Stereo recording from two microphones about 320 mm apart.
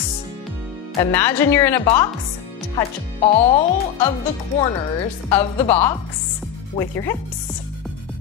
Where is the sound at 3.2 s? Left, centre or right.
Centre.